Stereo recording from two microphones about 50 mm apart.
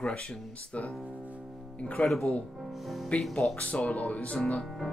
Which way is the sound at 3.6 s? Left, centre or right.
Left.